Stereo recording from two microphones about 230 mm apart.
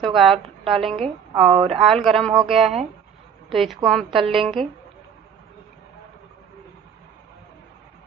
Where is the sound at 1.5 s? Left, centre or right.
Right.